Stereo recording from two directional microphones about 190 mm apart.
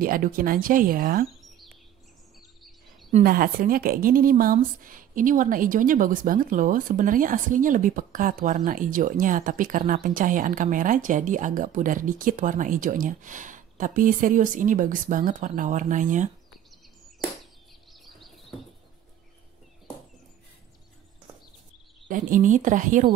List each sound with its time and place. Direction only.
0.0 s speech: 50° right (ahead or behind)
3.3 s speech: 50° right (ahead or behind)
22.0 s speech: 45° right (ahead or behind)